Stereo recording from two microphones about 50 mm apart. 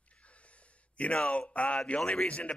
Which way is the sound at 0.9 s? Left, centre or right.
Left.